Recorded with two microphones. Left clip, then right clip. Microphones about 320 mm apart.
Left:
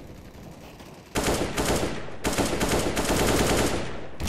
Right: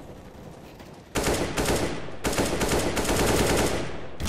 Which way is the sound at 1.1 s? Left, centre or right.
Centre.